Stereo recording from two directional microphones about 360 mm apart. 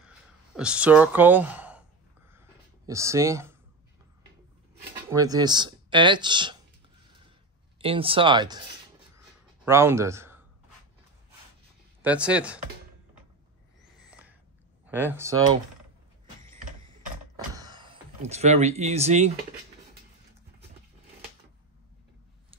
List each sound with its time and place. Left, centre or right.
0.6 s speech: centre
2.9 s speech: centre
5.1 s speech: centre
7.8 s speech: centre
9.7 s speech: centre
12.0 s speech: centre
14.0 s a sound: centre
14.9 s speech: centre
17.6 s speech: centre